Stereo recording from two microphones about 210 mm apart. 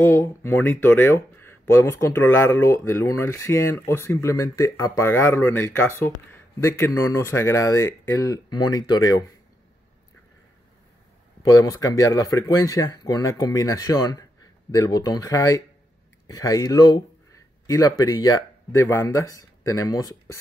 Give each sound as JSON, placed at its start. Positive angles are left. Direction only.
{"t": 0.0, "sound": "speech", "side_deg": 10}
{"t": 11.4, "sound": "speech", "side_deg": 15}